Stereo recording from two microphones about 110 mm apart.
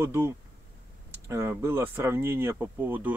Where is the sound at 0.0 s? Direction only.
25° right (ahead or behind).